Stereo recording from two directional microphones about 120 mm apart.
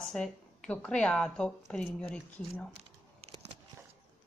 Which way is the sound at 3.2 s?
60° right (ahead or behind).